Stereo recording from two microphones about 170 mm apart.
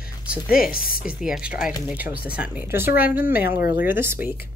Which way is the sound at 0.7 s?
55° left (ahead or behind).